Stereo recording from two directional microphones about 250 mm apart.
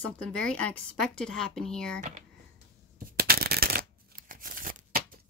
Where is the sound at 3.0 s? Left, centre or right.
Right.